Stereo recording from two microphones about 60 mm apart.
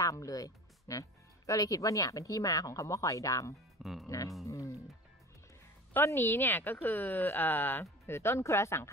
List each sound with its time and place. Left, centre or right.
0.0 s speech: left
3.8 s music: centre
4.5 s music: left
6.0 s speech: left